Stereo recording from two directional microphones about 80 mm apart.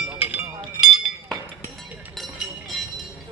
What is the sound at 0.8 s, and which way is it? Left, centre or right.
Chink, centre.